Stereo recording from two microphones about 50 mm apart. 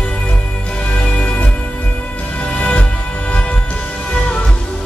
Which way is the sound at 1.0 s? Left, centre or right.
Left.